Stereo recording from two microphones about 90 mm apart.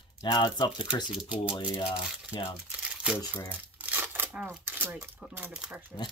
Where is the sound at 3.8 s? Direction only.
20° right (ahead or behind).